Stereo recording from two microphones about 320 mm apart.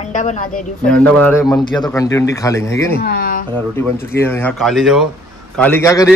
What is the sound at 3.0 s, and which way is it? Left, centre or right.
Speech, left.